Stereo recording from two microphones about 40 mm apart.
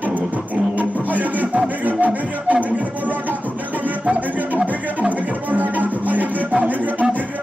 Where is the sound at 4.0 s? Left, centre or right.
Right.